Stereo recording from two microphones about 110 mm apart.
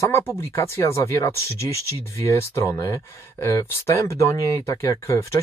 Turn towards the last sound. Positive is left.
turn(degrees=25)  # may be behind; listen again after turning